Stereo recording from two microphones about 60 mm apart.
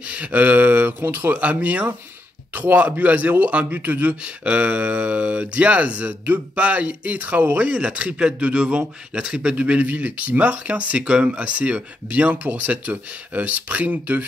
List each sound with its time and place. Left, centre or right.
0.1 s a man's voice: right